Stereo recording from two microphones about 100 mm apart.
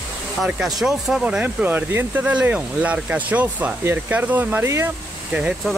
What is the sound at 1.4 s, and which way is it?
Speech, 20° right (ahead or behind).